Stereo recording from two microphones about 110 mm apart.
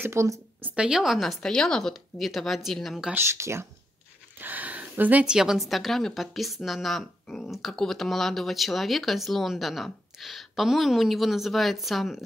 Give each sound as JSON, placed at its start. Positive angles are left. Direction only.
{"t": 0.0, "sound": "speech", "side_deg": -25}
{"t": 0.7, "sound": "a woman's voice", "side_deg": -10}
{"t": 3.2, "sound": "a woman's voice", "side_deg": -25}